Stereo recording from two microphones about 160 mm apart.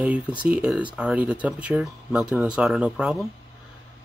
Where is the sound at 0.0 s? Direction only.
10° right (ahead or behind).